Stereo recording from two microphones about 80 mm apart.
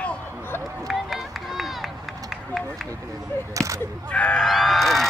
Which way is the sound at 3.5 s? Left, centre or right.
Right.